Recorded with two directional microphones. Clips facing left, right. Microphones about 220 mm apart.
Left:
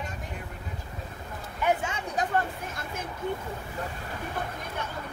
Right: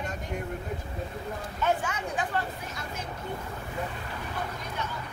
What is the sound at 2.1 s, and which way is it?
Chatter, 50° left (ahead or behind).